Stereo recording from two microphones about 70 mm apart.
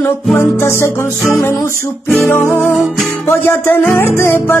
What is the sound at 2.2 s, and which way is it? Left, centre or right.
Music, left.